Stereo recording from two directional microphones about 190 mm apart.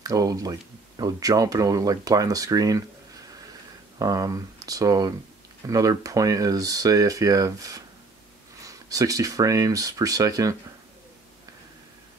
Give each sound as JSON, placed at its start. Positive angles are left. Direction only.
{"t": 0.0, "sound": "speech", "side_deg": -20}
{"t": 4.0, "sound": "speech", "side_deg": -15}